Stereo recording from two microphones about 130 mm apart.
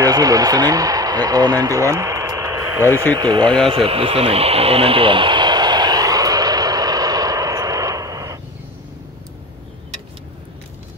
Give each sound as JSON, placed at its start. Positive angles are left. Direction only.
{"t": 0.0, "sound": "speech", "side_deg": -30}
{"t": 2.8, "sound": "speech", "side_deg": 15}
{"t": 3.2, "sound": "speech", "side_deg": -35}
{"t": 3.6, "sound": "radio", "side_deg": -45}